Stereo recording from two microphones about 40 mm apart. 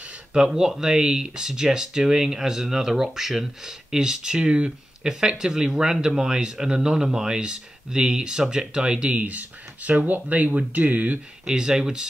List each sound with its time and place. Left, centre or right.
0.5 s speech: centre; by 9.2 s right
9.2 s speech: right
11.4 s speech: centre